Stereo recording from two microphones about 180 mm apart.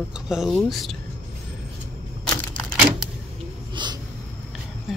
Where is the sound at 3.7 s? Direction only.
25° right (ahead or behind).